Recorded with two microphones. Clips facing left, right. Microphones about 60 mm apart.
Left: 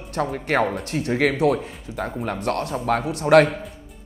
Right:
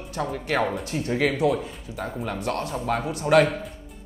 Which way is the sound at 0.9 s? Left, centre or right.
Left.